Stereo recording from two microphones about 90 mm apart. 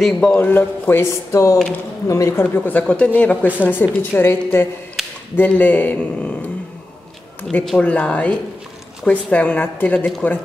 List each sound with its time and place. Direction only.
0.0 s a woman's voice: 10° left (ahead or behind)
0.4 s a woman's voice: 20° left (ahead or behind); by 2.3 s 40° left (ahead or behind)
2.5 s speech: 20° left (ahead or behind)
2.8 s a woman's voice: 10° left (ahead or behind)
5.0 s a sound: centre (ahead or behind)
5.3 s speech: 20° left (ahead or behind)
7.8 s a woman's voice: 15° left (ahead or behind)